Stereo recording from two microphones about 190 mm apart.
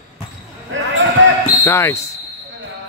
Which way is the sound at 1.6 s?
15° left (ahead or behind).